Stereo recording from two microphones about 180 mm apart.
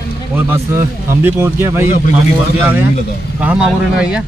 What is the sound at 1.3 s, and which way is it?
Speech, 15° right (ahead or behind).